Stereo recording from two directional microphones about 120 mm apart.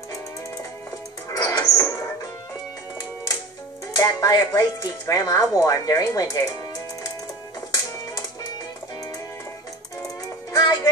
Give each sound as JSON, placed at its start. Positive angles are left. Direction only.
{"t": 1.3, "sound": "music", "side_deg": 30}
{"t": 3.9, "sound": "speech", "side_deg": 30}
{"t": 10.5, "sound": "music", "side_deg": 30}